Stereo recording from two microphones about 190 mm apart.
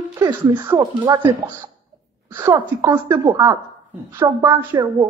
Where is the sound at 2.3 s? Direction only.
15° right (ahead or behind).